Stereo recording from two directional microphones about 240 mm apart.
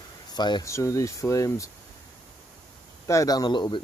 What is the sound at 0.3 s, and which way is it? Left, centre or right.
Speech, centre.